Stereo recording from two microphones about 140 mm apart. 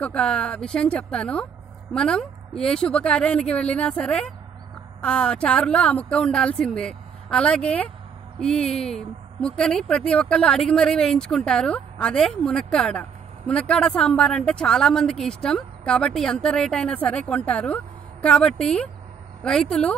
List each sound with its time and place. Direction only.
0.0 s a woman's voice: 10° left (ahead or behind)